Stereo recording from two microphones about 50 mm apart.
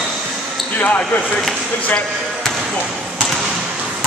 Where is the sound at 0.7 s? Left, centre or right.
Left.